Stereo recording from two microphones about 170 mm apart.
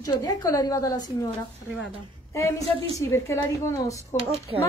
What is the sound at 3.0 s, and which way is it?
A woman's voice, 15° left (ahead or behind).